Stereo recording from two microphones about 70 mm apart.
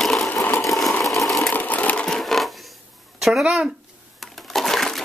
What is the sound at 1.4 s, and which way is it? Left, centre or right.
Sewing machine, left.